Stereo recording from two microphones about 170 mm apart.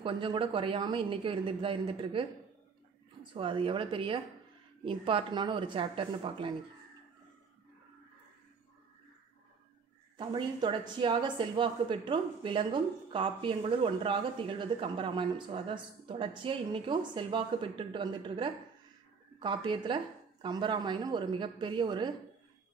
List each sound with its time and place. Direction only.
0.0 s speech: 30° right (ahead or behind)
3.3 s speech: 30° right (ahead or behind)
10.1 s speech: 25° right (ahead or behind)